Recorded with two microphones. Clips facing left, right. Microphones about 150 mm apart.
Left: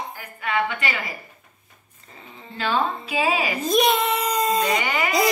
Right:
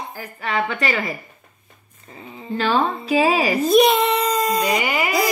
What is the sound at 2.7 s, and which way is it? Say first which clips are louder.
Speech: right 4 dB; 40° right (ahead or behind).